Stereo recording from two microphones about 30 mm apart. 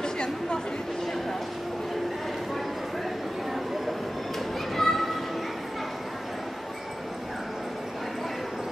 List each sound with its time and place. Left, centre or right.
0.0 s chatter: left
4.7 s children playing: centre